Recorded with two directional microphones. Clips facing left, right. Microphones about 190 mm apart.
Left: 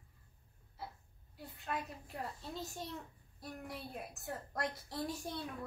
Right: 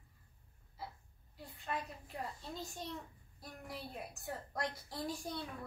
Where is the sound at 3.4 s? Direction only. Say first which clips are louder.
Left 2 dB; centre (ahead or behind).